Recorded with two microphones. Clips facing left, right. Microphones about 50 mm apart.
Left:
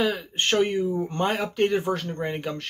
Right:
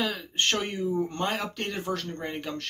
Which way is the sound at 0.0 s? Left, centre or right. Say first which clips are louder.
Left 3 dB; centre.